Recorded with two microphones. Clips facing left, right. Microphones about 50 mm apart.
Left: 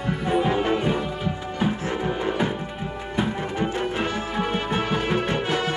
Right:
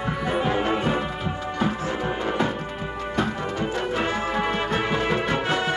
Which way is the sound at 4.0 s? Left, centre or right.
Right.